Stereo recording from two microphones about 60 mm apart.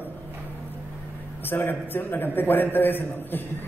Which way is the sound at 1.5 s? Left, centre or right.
Left.